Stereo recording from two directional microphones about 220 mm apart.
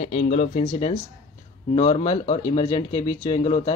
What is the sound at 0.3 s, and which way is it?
Speech, 35° left (ahead or behind).